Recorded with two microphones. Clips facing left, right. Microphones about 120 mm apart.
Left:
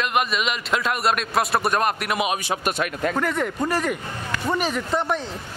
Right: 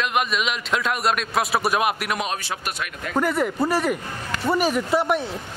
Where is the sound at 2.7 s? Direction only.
45° left (ahead or behind).